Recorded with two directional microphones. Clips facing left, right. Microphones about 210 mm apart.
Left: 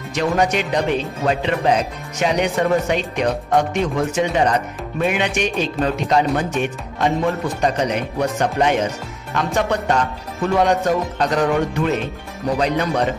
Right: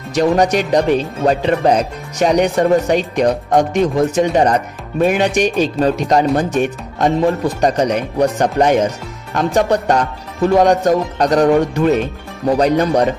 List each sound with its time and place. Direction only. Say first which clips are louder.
0.1 s speech: right 5 dB; 40° right (ahead or behind)